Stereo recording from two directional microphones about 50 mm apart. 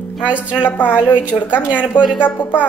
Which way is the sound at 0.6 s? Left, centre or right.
Left.